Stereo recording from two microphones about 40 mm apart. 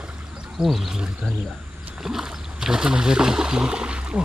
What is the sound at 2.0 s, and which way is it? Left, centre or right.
Speech, centre.